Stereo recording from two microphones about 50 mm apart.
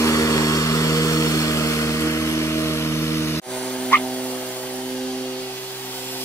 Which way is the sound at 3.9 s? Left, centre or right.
Left.